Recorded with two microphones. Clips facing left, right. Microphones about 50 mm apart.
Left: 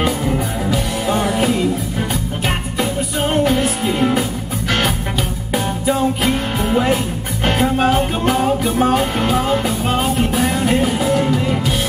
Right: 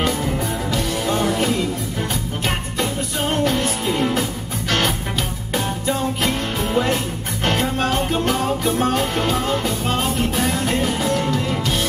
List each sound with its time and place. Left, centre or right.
0.0 s music: centre
2.8 s music: centre